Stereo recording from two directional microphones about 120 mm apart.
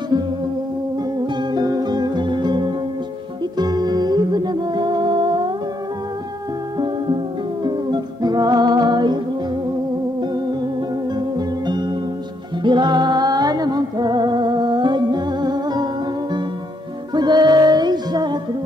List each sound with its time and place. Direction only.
1.2 s music: 35° right (ahead or behind)
7.6 s music: 35° right (ahead or behind)
11.1 s music: 35° right (ahead or behind)
17.1 s music: 35° right (ahead or behind)